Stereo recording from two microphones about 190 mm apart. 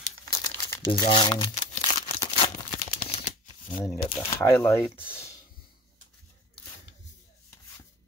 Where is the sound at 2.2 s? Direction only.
25° left (ahead or behind).